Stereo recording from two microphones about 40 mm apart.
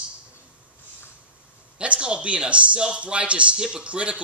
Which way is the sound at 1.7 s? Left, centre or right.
Right.